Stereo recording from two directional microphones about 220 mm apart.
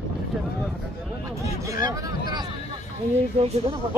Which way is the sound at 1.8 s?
15° right (ahead or behind).